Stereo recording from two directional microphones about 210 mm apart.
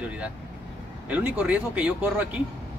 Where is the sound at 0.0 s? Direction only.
5° right (ahead or behind).